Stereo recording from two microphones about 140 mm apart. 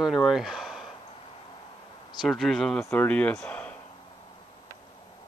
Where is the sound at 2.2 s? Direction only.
Centre (ahead or behind).